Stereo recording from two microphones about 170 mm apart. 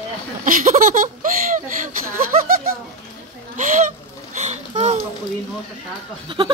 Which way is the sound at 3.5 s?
50° right (ahead or behind).